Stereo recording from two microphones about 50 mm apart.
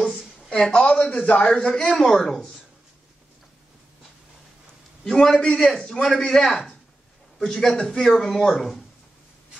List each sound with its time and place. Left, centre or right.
0.5 s a man's voice: centre
1.1 s a man's voice: left
1.5 s a man's voice: centre
5.0 s a man's voice: centre